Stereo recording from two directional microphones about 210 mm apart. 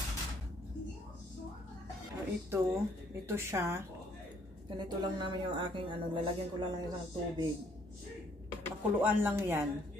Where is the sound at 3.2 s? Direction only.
15° right (ahead or behind).